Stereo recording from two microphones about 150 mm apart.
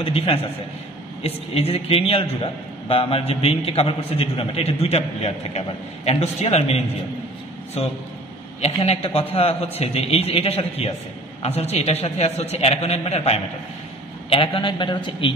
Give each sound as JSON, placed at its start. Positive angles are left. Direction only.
{"t": 0.0, "sound": "a man's voice", "side_deg": 40}